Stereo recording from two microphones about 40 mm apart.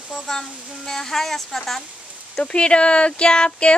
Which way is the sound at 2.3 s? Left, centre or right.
Left.